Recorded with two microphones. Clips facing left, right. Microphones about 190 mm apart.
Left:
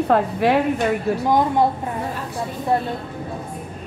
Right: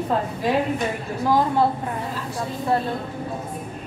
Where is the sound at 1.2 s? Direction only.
20° left (ahead or behind).